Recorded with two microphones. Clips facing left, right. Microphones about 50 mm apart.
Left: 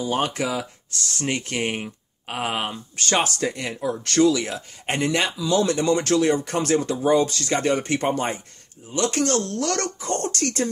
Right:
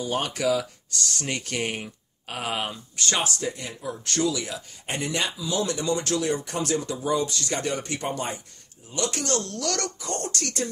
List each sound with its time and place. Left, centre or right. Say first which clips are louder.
0.0 s speech: left 2 dB; left
3.0 s speech: left 5 dB; left
3.3 s speech: left 5 dB; left